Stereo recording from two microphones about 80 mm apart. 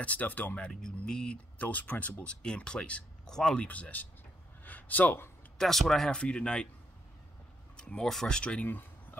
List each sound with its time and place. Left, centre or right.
0.0 s speech: centre
0.7 s speech: centre
5.6 s speech: centre
7.7 s speech: centre
8.6 s a sound: left